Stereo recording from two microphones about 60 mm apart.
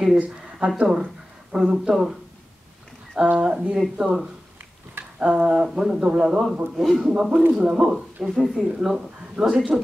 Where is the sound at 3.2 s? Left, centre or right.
Centre.